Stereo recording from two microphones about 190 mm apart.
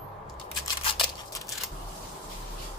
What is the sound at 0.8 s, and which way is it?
Scissors, 30° left (ahead or behind).